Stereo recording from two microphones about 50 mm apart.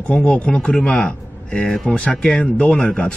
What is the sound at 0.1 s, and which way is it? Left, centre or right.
Speech, left.